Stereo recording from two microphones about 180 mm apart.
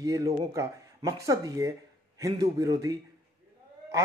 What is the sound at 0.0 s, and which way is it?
Speech, 20° right (ahead or behind).